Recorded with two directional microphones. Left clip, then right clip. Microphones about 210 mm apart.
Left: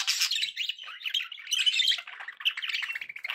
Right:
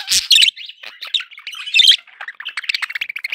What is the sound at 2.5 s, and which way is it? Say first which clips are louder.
Chirp tone: right 10 dB; 45° right (ahead or behind).